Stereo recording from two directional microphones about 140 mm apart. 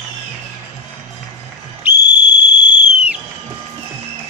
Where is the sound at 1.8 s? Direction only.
10° right (ahead or behind).